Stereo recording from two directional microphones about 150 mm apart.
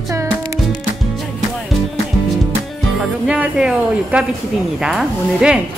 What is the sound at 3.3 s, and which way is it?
Speech, 5° right (ahead or behind).